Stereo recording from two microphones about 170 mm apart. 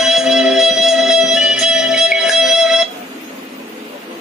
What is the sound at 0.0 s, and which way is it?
Music, centre (ahead or behind).